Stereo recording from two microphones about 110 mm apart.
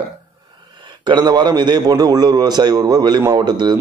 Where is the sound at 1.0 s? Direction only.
40° right (ahead or behind).